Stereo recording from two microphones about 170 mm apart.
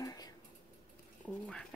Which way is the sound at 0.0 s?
20° left (ahead or behind).